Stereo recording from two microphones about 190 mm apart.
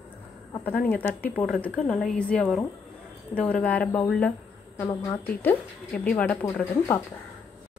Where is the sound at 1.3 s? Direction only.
5° left (ahead or behind).